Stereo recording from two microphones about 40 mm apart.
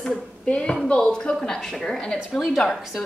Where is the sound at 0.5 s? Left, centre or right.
Left.